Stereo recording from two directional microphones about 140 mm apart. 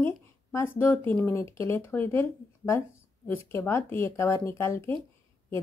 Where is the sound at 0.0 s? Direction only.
15° left (ahead or behind).